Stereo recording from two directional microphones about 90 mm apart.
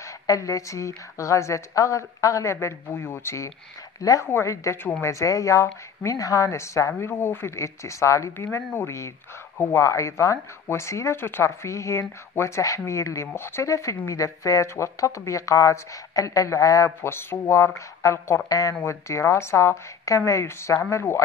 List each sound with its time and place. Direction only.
0.0 s speech: 35° left (ahead or behind)
4.0 s speech: 40° left (ahead or behind)